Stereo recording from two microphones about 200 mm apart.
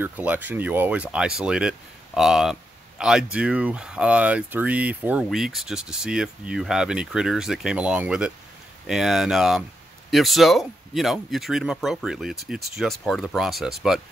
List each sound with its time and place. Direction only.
0.0 s speech: 10° right (ahead or behind)